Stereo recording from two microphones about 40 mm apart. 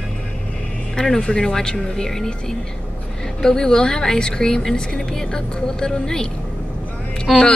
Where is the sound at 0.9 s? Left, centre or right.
Centre.